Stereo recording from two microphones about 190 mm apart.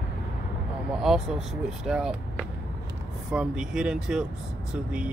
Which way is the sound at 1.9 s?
5° right (ahead or behind).